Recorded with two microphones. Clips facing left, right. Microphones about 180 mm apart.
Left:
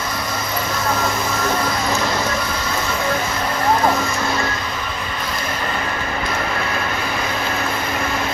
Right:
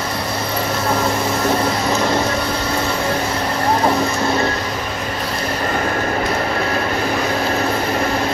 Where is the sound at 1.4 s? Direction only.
30° right (ahead or behind).